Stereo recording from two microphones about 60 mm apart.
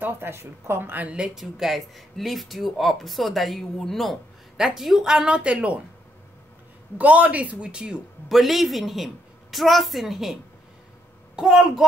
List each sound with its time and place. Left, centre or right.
0.0 s speech: right
0.9 s speech: centre
1.3 s a woman's voice: centre; by 5.8 s right
7.0 s speech: right
8.3 s speech: centre
11.3 s a woman's voice: centre